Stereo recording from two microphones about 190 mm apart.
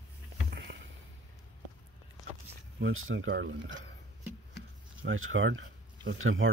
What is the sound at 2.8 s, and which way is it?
Speech, 90° right.